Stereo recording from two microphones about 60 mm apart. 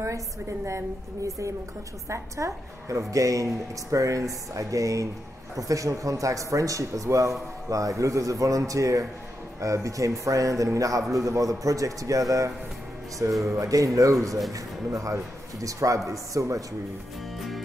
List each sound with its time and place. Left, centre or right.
0.0 s a woman's voice: right